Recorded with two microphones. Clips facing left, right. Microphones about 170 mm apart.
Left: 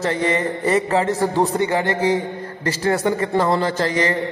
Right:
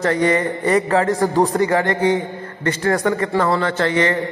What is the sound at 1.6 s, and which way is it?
A man's voice, 25° left (ahead or behind).